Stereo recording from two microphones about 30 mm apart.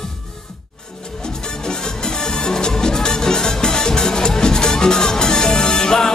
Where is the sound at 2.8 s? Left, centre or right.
Left.